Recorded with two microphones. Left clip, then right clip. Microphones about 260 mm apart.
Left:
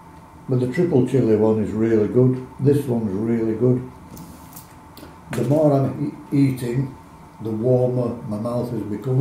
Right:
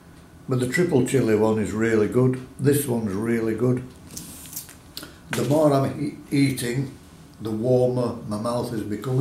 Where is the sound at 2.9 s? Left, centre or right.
Centre.